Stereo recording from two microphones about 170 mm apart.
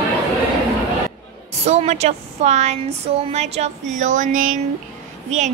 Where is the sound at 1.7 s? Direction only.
40° right (ahead or behind).